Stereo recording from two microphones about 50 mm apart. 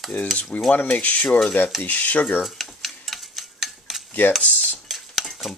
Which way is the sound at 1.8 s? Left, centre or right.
Left.